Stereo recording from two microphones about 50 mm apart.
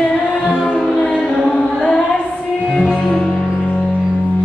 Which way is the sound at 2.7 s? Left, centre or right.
Left.